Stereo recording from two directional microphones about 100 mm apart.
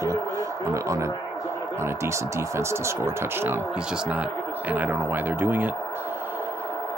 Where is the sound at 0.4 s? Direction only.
30° right (ahead or behind).